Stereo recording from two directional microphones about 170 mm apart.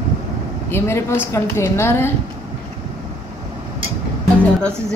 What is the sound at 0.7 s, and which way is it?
A woman's voice, 15° left (ahead or behind).